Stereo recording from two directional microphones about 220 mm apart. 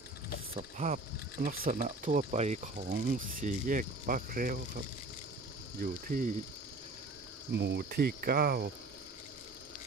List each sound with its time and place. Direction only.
0.7 s speech: 35° right (ahead or behind)
5.8 s speech: 40° right (ahead or behind)
7.5 s cricket: 50° right (ahead or behind)